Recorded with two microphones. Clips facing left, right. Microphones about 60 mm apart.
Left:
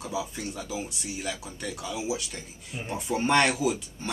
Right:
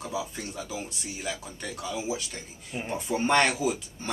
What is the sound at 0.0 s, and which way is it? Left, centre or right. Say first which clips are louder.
Speech: left 1 dB; centre.